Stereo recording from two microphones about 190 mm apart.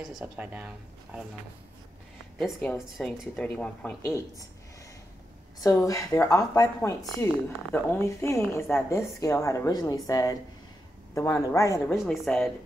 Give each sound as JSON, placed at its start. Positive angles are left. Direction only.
{"t": 0.2, "sound": "speech", "side_deg": -10}
{"t": 2.3, "sound": "speech", "side_deg": 5}
{"t": 5.6, "sound": "speech", "side_deg": 20}
{"t": 11.9, "sound": "a woman's voice", "side_deg": 0}